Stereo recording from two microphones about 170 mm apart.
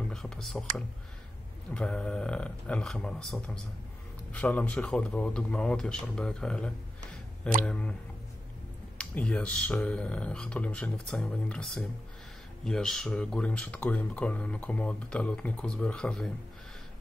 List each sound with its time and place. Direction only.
0.1 s whispering: 5° left (ahead or behind)
1.7 s speech: 5° left (ahead or behind)
8.9 s speech: 5° left (ahead or behind)